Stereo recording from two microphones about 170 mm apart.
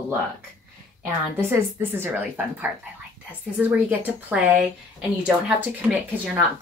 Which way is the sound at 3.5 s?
10° right (ahead or behind).